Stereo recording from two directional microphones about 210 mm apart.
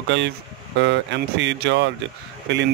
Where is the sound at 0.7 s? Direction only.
60° right (ahead or behind).